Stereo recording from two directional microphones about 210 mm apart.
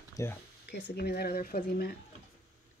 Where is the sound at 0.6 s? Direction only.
50° left (ahead or behind).